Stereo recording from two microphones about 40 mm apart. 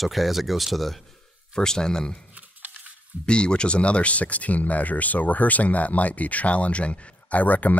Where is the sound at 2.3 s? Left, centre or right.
Right.